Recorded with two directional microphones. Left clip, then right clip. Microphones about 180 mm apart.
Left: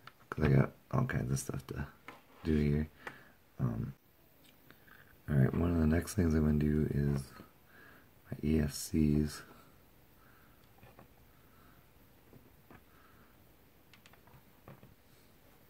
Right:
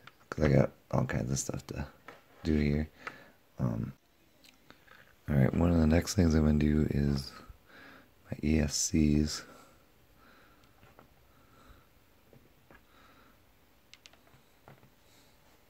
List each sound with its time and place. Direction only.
0.3 s speech: 20° right (ahead or behind)
3.5 s a sound: 25° right (ahead or behind)
5.2 s speech: 35° right (ahead or behind)